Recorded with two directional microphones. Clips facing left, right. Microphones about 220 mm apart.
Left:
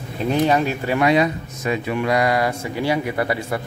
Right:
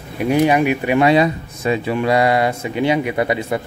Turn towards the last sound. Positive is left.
turn(degrees=-20)  # may be behind; listen again after turning